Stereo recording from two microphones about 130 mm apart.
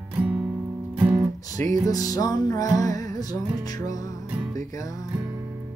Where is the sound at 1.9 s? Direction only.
30° left (ahead or behind).